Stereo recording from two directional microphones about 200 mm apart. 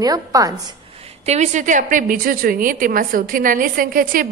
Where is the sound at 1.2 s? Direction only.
35° right (ahead or behind).